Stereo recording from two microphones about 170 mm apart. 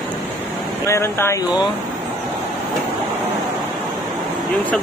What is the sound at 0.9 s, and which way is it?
Speech, 15° left (ahead or behind).